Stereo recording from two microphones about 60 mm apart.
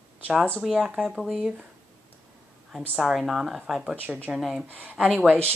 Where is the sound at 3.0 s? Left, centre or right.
Centre.